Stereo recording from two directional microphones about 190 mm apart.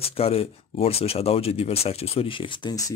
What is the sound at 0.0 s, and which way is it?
Speech, 30° left (ahead or behind).